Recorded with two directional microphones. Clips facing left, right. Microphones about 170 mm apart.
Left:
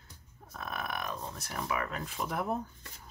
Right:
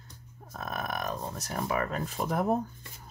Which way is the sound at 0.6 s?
40° right (ahead or behind).